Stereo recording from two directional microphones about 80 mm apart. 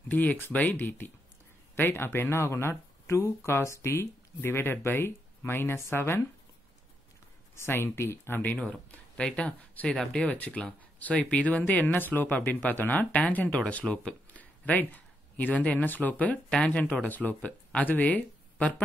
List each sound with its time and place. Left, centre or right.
0.1 s speech: left
7.5 s speech: left
9.1 s speech: centre